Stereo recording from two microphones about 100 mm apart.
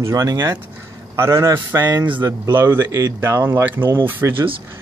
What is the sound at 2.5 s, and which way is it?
Speech, 25° right (ahead or behind).